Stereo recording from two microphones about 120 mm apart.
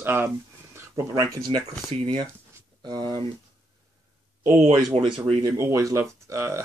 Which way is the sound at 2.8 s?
40° right (ahead or behind).